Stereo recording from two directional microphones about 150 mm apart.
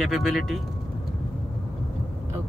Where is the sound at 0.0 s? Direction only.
Centre (ahead or behind).